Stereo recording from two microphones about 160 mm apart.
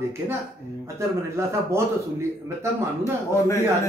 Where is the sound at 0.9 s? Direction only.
15° right (ahead or behind).